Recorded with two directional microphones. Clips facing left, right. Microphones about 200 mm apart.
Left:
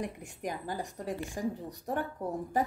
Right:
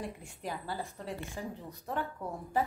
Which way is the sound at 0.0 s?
15° left (ahead or behind).